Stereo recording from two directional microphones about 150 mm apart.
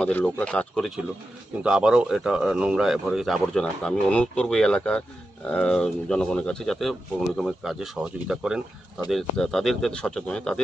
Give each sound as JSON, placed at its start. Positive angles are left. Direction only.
{"t": 0.0, "sound": "speech", "side_deg": 10}